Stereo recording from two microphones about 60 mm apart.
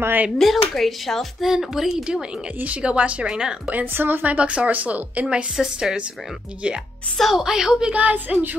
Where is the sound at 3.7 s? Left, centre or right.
Right.